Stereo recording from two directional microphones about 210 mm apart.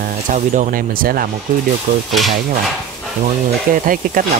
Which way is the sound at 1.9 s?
30° right (ahead or behind).